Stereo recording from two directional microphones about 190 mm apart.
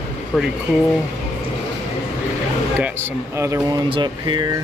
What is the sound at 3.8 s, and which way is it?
Speech, 25° right (ahead or behind).